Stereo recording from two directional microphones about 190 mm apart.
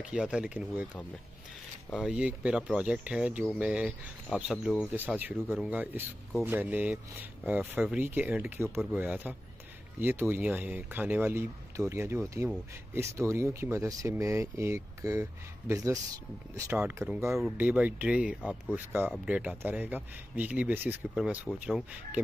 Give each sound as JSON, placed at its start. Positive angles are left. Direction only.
{"t": 0.0, "sound": "speech", "side_deg": -5}
{"t": 2.0, "sound": "speech", "side_deg": -5}
{"t": 17.3, "sound": "speech", "side_deg": 0}
{"t": 18.4, "sound": "speech", "side_deg": 5}
{"t": 19.2, "sound": "speech", "side_deg": -5}